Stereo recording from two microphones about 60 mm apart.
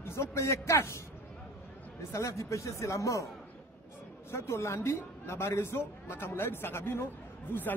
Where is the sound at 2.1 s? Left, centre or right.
Left.